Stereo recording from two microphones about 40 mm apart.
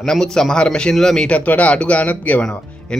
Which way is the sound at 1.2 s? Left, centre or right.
Left.